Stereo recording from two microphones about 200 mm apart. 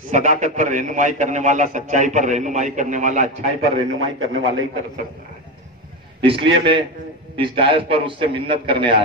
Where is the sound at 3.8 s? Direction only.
85° right.